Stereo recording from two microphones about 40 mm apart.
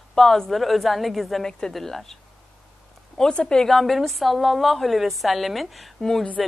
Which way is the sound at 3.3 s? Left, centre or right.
Centre.